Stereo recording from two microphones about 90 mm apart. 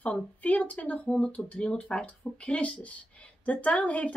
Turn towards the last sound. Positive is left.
turn(degrees=15)  # may be behind; listen again after turning